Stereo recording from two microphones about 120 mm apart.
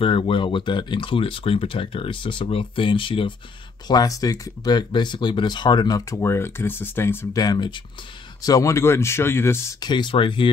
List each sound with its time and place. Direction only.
0.0 s speech: 45° left (ahead or behind)
3.8 s speech: 35° left (ahead or behind); by 7.2 s 20° left (ahead or behind)
7.3 s speech: 35° left (ahead or behind); by 9.8 s 20° left (ahead or behind)
9.8 s speech: 40° left (ahead or behind)